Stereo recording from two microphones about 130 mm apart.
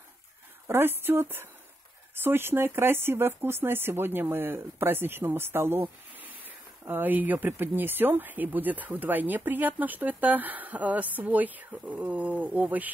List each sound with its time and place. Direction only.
0.7 s speech: 20° right (ahead or behind)